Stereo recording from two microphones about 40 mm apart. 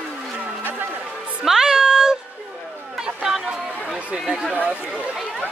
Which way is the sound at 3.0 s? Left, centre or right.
Centre.